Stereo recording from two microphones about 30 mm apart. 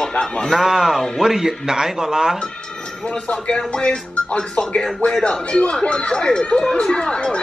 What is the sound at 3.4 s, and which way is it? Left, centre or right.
Speech, left.